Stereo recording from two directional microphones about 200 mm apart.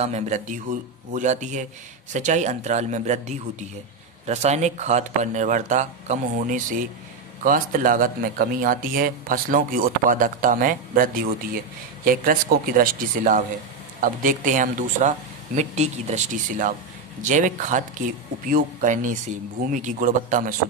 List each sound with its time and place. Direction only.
0.0 s a woman's voice: 35° right (ahead or behind)